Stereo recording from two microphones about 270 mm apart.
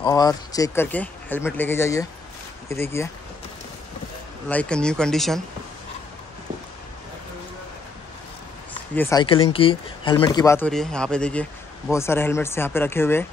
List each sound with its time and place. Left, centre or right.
0.0 s speech: centre
4.5 s speech: centre
8.9 s speech: centre
9.2 s speech: centre